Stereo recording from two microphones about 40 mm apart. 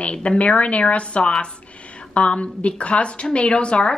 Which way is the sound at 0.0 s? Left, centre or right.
Left.